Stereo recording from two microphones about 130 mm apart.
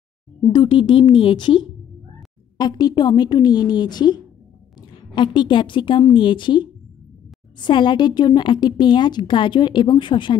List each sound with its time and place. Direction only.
0.5 s a woman's voice: 35° left (ahead or behind)